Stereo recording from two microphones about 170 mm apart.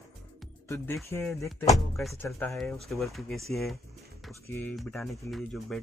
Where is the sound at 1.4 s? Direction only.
20° left (ahead or behind).